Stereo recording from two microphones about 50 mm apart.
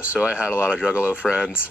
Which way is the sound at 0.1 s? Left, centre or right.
Right.